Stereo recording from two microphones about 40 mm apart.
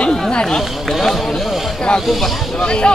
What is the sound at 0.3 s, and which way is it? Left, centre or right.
Speech, left.